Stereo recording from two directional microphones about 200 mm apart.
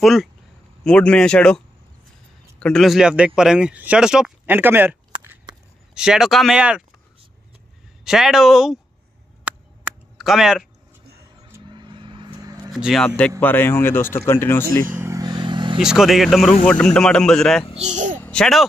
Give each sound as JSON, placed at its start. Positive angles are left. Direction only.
{"t": 0.0, "sound": "speech", "side_deg": 0}
{"t": 2.6, "sound": "speech", "side_deg": 0}
{"t": 5.9, "sound": "speech", "side_deg": -5}
{"t": 8.0, "sound": "speech", "side_deg": 0}
{"t": 9.4, "sound": "a sound", "side_deg": -5}
{"t": 11.6, "sound": "vehicle", "side_deg": -25}
{"t": 12.7, "sound": "speech", "side_deg": 0}
{"t": 15.0, "sound": "vehicle", "side_deg": -15}
{"t": 15.8, "sound": "speech", "side_deg": -5}
{"t": 17.7, "sound": "a child's voice", "side_deg": -35}
{"t": 18.2, "sound": "speech", "side_deg": 5}